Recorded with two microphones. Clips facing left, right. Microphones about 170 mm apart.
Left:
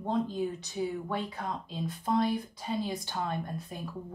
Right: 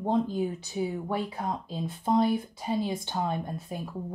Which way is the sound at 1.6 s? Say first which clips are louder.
Right 3 dB; 25° right (ahead or behind).